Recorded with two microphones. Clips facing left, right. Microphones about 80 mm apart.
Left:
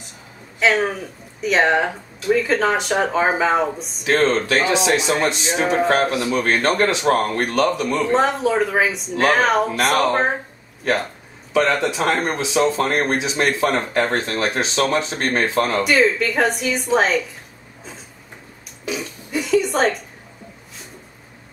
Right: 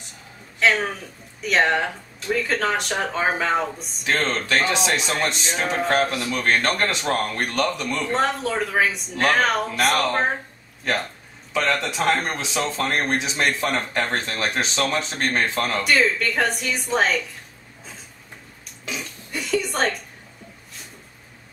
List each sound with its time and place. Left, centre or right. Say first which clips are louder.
0.6 s speech: left 3 dB; centre
7.2 s speech: left 5 dB; left
7.5 s speech: left 6 dB; centre
9.9 s speech: left 4 dB; centre
11.5 s speech: left 5 dB; centre
18.9 s burping: left 6 dB; centre